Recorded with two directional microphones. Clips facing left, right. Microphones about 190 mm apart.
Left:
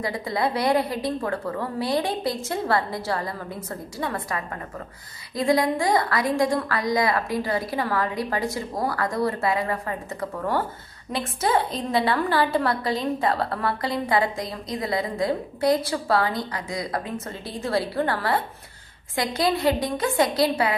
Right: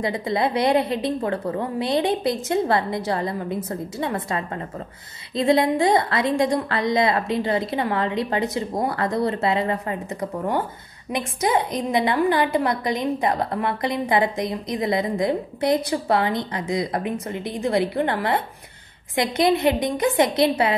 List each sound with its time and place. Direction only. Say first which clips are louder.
0.0 s a woman's voice: right 3 dB; 20° right (ahead or behind)